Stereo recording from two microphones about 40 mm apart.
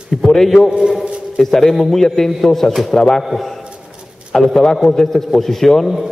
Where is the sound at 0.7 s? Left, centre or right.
Centre.